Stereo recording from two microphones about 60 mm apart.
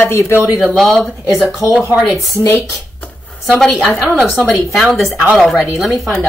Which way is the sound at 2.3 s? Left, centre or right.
Left.